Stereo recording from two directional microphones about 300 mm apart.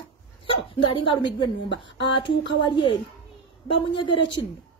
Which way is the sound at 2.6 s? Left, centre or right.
Centre.